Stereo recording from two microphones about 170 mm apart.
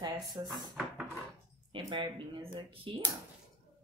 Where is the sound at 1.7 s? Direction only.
30° right (ahead or behind).